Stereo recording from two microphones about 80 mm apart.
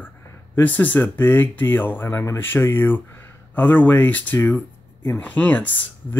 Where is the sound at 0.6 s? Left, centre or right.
Left.